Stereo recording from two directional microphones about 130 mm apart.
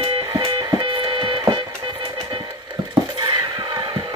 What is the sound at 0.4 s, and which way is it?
Music, 40° right (ahead or behind).